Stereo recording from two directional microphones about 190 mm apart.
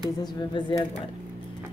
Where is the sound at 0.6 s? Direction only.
25° left (ahead or behind).